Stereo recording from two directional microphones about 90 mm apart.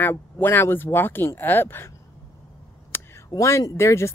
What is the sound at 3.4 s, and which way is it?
Speech, 35° left (ahead or behind).